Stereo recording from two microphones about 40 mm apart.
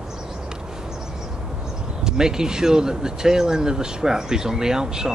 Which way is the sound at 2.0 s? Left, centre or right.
Centre.